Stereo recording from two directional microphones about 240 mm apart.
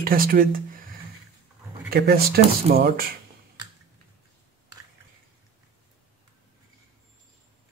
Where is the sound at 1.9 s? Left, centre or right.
Right.